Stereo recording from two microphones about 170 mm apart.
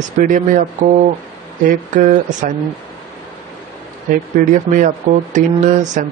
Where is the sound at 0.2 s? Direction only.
50° right (ahead or behind).